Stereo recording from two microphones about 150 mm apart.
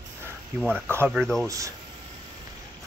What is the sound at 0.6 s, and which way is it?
Speech, 5° right (ahead or behind).